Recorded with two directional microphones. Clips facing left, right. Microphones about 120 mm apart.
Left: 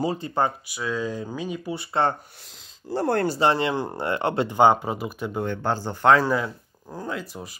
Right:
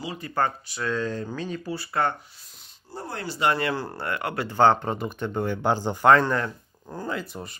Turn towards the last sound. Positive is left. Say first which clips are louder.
# even
turn(degrees=0)  # may be behind; listen again after turning